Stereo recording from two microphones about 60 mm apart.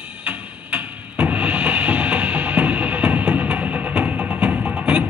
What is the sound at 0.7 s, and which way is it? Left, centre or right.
Music, right.